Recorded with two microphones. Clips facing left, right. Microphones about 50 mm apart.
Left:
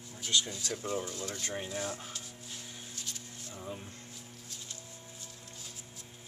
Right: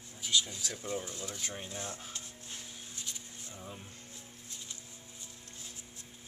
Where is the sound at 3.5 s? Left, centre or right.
Centre.